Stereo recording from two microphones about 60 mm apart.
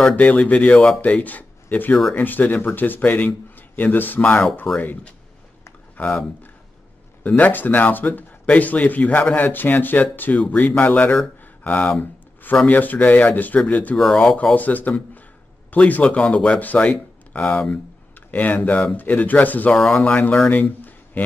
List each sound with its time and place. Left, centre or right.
0.1 s a man's voice: left
7.2 s speech: left
13.9 s speech: centre
14.3 s speech: left
19.7 s speech: centre
20.3 s a sound: left